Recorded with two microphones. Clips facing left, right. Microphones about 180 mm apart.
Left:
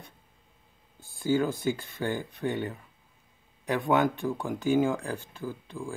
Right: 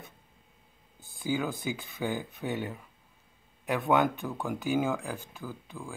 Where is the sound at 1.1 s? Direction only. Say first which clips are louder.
Left 5 dB; centre (ahead or behind).